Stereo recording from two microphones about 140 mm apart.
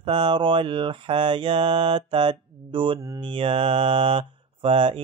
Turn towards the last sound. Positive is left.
turn(degrees=-40)  # may be behind; listen again after turning